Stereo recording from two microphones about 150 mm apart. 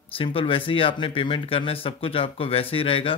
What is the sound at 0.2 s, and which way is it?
Speech, 35° left (ahead or behind).